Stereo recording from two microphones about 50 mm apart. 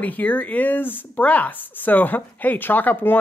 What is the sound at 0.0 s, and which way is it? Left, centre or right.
A woman's voice, left.